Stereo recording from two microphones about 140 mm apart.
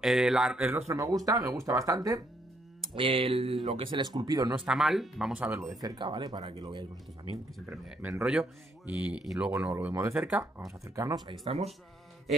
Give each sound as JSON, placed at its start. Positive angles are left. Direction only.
{"t": 0.0, "sound": "speech", "side_deg": -5}
{"t": 0.7, "sound": "speech", "side_deg": -20}
{"t": 2.8, "sound": "speech", "side_deg": -40}
{"t": 4.6, "sound": "speech", "side_deg": 0}
{"t": 5.3, "sound": "speech", "side_deg": -10}
{"t": 5.6, "sound": "speech", "side_deg": -25}
{"t": 7.3, "sound": "speech", "side_deg": 35}
{"t": 8.2, "sound": "speech", "side_deg": -5}
{"t": 11.0, "sound": "speech", "side_deg": -30}